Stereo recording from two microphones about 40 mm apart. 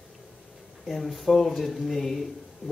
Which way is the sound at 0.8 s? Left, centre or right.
Centre.